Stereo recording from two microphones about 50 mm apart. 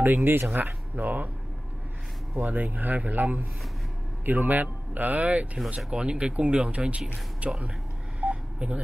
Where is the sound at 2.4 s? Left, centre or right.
Right.